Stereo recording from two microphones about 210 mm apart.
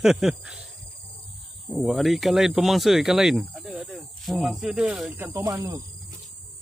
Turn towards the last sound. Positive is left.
turn(degrees=-15)  # may be behind; listen again after turning